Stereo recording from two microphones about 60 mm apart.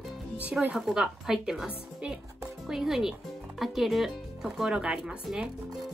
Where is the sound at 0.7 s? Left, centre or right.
Centre.